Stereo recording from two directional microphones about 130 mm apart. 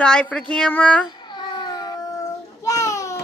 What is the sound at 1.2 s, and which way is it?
Child singing, 35° left (ahead or behind).